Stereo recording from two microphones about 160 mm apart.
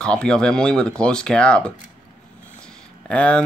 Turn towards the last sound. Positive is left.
turn(degrees=5)  # may be behind; listen again after turning